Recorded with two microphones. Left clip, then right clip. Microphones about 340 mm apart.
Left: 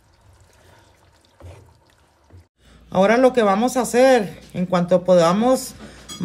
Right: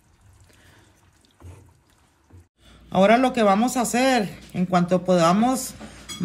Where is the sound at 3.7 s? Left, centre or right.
Centre.